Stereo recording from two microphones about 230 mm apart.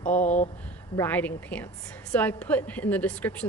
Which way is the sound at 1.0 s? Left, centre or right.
Centre.